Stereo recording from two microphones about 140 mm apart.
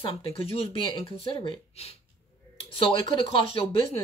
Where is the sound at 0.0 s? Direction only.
40° left (ahead or behind).